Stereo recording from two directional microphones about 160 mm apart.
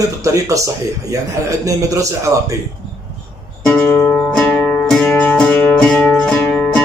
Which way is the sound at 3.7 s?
10° left (ahead or behind).